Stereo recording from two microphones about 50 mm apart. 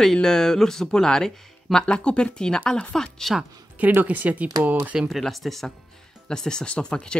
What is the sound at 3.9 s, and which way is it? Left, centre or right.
Speech, right.